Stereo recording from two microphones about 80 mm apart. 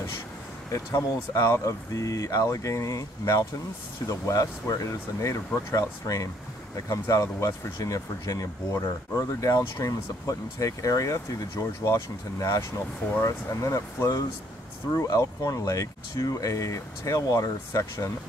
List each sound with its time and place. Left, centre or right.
0.7 s speech: left